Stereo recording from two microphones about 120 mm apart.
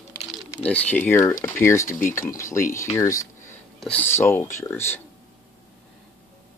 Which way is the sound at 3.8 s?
15° left (ahead or behind).